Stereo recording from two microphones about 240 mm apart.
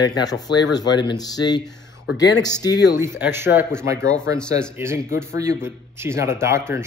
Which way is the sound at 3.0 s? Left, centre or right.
Centre.